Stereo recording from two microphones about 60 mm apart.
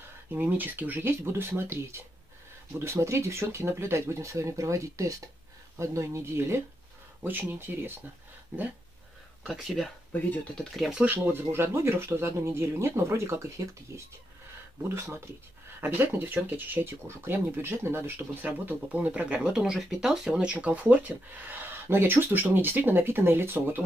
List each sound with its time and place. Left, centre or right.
0.3 s speech: right
7.2 s speech: right
9.5 s speech: centre
11.1 s speech: right; by 20.4 s centre
20.4 s speech: right
21.8 s speech: right